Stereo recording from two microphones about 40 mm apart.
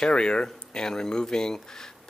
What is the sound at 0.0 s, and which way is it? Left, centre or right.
Speech, left.